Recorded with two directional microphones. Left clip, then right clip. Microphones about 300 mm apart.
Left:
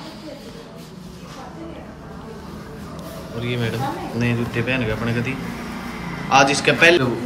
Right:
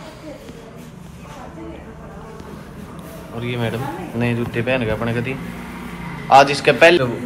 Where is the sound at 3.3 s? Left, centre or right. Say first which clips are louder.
Right 1 dB; centre.